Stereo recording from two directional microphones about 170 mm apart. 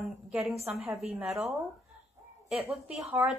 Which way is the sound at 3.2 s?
10° right (ahead or behind).